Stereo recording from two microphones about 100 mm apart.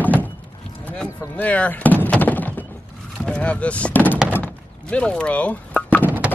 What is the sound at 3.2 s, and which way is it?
Speech, 15° left (ahead or behind).